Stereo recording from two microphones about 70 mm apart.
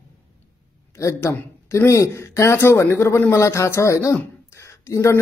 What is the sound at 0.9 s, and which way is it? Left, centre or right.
A man's voice, left.